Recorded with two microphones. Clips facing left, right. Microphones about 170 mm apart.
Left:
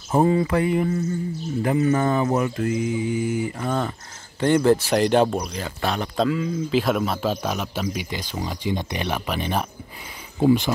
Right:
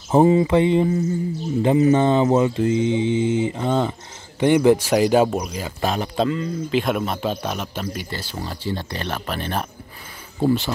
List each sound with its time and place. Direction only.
0.1 s speech: 20° right (ahead or behind)
6.1 s speech: centre (ahead or behind)